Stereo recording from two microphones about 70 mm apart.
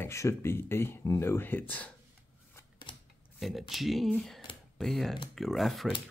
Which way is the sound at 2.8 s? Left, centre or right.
Left.